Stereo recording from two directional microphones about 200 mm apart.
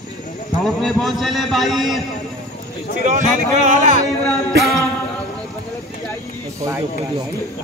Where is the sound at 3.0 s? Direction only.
40° right (ahead or behind).